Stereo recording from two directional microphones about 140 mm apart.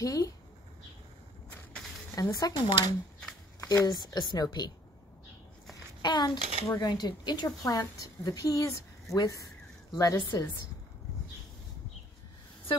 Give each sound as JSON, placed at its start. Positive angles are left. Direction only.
{"t": 0.0, "sound": "a woman's voice", "side_deg": 25}
{"t": 2.1, "sound": "a woman's voice", "side_deg": 25}
{"t": 6.0, "sound": "a child's voice", "side_deg": 30}